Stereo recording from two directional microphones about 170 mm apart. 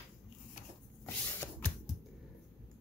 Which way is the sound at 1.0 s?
10° left (ahead or behind).